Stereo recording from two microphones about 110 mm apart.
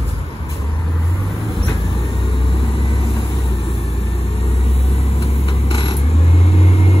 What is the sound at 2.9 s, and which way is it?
Vehicle, 55° left (ahead or behind).